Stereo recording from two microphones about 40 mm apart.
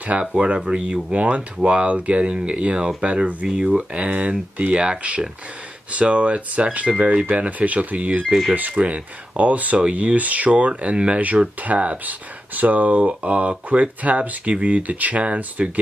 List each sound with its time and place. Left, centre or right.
0.0 s speech: right